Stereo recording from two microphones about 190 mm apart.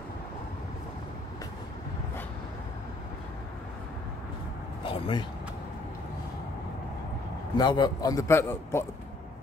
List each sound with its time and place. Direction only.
4.8 s speech: 30° left (ahead or behind)
7.5 s a man's voice: 20° left (ahead or behind)